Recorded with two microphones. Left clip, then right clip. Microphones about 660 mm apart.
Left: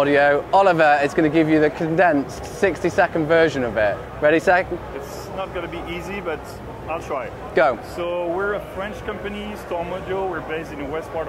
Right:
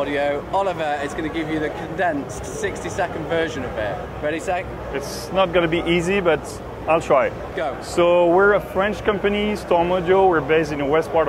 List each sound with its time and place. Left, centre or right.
0.0 s speech: left
5.4 s speech: right
7.6 s speech: left
7.9 s speech: right